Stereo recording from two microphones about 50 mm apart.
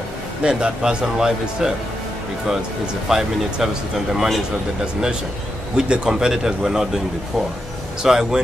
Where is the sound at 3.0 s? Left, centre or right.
Centre.